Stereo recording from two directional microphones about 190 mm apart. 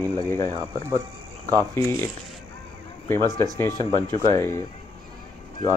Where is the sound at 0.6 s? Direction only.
15° right (ahead or behind).